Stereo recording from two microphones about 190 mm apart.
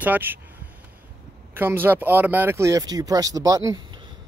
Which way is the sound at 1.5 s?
10° right (ahead or behind).